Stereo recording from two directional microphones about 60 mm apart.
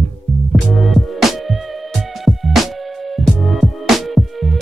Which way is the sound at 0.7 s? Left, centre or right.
Centre.